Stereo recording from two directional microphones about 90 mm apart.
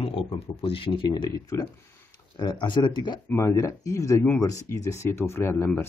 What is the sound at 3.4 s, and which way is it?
Speech, 35° left (ahead or behind).